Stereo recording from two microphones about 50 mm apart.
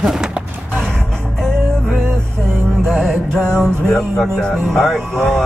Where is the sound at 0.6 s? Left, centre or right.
Centre.